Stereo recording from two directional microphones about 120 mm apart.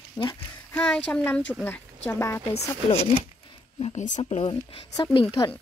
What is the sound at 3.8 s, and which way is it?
Speech, 85° left.